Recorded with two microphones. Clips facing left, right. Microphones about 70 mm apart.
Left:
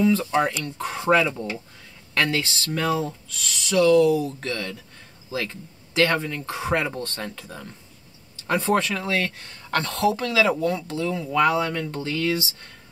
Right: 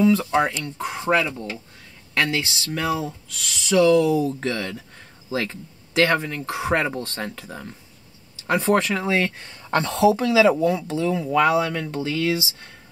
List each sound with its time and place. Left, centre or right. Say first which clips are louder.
0.0 s speech: right 2 dB; centre
2.1 s speech: even; centre
3.6 s speech: even; centre